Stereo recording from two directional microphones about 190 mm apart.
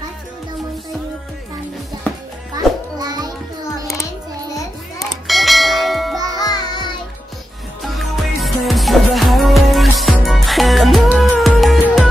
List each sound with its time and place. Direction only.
2.5 s music: 20° right (ahead or behind)
4.9 s children playing: centre (ahead or behind)
6.3 s music: 20° left (ahead or behind)
7.8 s music: centre (ahead or behind)